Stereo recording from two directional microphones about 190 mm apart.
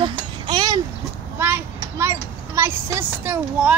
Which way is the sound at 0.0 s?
25° right (ahead or behind).